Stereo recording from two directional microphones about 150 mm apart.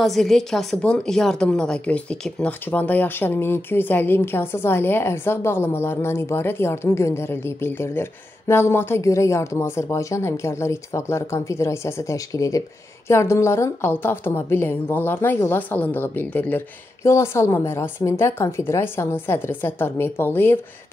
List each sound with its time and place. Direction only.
0.0 s a woman's voice: centre (ahead or behind)